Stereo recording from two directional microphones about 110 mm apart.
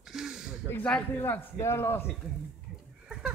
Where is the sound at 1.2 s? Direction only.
25° left (ahead or behind).